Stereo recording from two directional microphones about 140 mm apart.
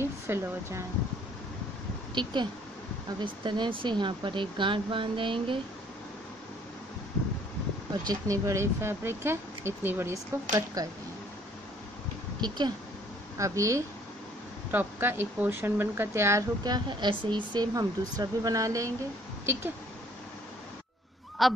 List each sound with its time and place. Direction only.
0.0 s speech: 15° right (ahead or behind)
2.2 s speech: 35° right (ahead or behind)
8.1 s speech: 25° right (ahead or behind)
12.4 s speech: 30° right (ahead or behind)
21.4 s speech: centre (ahead or behind)